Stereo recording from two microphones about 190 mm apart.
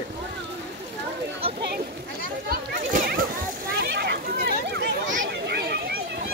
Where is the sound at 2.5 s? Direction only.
50° right (ahead or behind).